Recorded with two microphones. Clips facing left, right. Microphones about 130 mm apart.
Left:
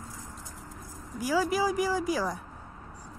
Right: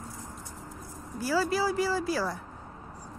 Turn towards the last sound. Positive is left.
turn(degrees=15)  # may be behind; listen again after turning